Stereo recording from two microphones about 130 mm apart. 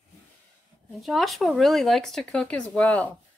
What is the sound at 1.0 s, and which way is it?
Speech, centre (ahead or behind).